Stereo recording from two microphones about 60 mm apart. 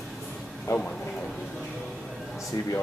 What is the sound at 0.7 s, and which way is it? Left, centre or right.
Speech, left.